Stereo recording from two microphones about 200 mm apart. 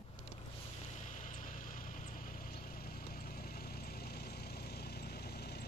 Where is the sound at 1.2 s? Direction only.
40° left (ahead or behind).